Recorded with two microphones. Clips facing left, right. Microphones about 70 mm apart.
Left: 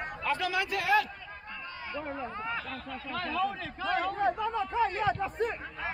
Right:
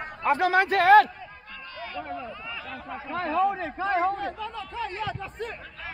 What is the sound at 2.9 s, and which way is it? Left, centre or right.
Speech, right.